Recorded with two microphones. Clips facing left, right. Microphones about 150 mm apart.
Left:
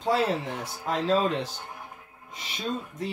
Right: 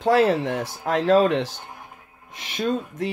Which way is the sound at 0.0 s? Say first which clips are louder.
Right 7 dB; 70° right (ahead or behind).